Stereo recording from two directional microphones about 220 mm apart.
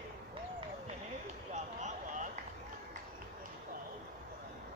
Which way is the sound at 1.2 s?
30° right (ahead or behind).